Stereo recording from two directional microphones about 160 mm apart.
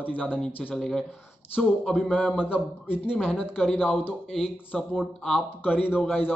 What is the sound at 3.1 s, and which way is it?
A man's voice, 5° left (ahead or behind).